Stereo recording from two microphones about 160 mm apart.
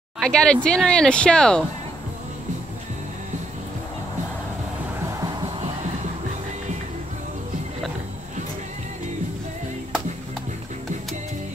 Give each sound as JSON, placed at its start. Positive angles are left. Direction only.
{"t": 0.2, "sound": "speech", "side_deg": 5}
{"t": 5.0, "sound": "music", "side_deg": -20}